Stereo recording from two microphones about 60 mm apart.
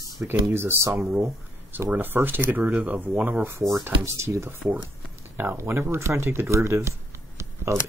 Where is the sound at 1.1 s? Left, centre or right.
Right.